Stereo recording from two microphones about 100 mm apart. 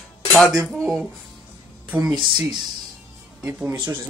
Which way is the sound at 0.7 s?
5° right (ahead or behind).